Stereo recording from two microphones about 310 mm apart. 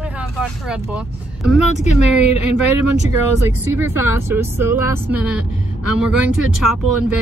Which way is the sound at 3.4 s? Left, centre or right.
Centre.